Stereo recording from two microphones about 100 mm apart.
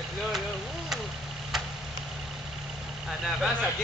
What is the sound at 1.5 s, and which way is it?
Vehicle, 5° right (ahead or behind).